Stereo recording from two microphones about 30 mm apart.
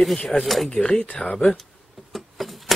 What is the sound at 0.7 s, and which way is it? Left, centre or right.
Speech, left.